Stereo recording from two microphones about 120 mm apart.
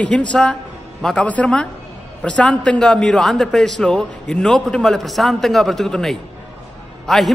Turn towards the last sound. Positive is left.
turn(degrees=0)  # may be behind; listen again after turning